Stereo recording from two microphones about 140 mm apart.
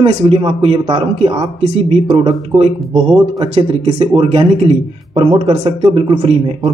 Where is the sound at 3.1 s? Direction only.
40° right (ahead or behind).